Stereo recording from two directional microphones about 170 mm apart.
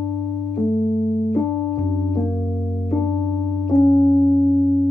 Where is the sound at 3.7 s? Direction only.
15° left (ahead or behind).